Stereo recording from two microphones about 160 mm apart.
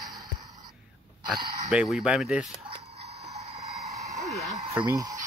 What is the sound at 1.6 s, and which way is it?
Speech, centre (ahead or behind).